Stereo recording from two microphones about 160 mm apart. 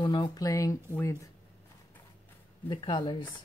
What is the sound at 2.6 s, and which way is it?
Speech, 30° left (ahead or behind).